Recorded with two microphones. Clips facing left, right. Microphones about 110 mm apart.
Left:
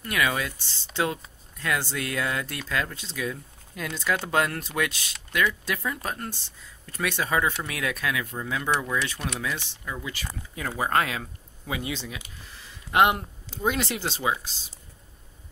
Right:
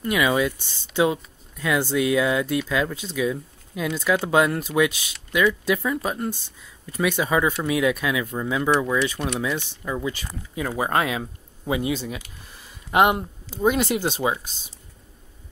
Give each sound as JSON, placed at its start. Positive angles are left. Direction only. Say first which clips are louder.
{"t": 0.0, "sound": "speech", "louder": "right 6 dB", "side_deg": -15}
{"t": 13.6, "sound": "speech", "louder": "right 6 dB", "side_deg": -15}